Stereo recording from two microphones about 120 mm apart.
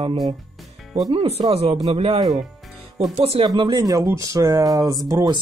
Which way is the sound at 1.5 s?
55° right (ahead or behind).